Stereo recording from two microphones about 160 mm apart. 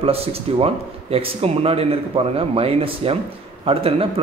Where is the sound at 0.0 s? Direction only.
35° right (ahead or behind).